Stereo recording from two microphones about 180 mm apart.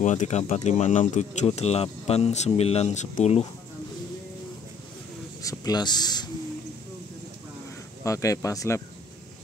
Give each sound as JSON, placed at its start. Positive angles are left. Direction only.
{"t": 0.0, "sound": "speech", "side_deg": 40}
{"t": 5.4, "sound": "speech", "side_deg": 20}
{"t": 8.0, "sound": "speech", "side_deg": 15}